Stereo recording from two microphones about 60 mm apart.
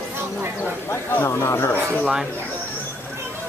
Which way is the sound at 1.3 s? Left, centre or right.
Left.